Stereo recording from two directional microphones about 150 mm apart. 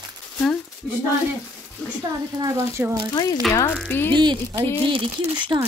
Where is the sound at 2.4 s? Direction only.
15° right (ahead or behind).